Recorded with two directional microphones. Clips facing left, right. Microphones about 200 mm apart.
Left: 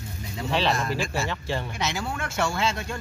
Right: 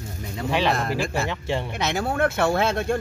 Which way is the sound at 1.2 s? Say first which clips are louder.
Right 3 dB; 20° right (ahead or behind).